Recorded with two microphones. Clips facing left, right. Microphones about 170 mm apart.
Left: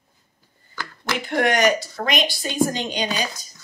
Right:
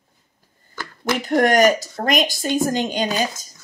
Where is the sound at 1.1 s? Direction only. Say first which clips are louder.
Right 4 dB; 40° right (ahead or behind).